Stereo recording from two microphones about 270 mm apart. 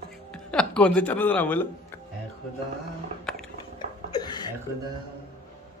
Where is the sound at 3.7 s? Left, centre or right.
Centre.